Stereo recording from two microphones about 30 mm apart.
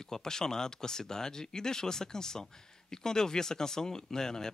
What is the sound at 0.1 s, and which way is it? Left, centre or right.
Speech, centre.